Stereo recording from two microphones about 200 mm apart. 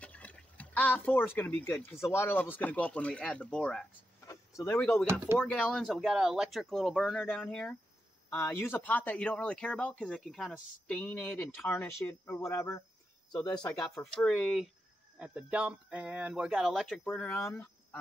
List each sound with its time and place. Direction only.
0.0 s speech: 5° left (ahead or behind)
4.3 s speech: 15° left (ahead or behind)
13.9 s speech: 5° left (ahead or behind)